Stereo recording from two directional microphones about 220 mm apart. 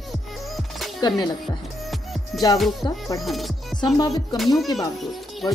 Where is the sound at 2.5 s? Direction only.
20° left (ahead or behind).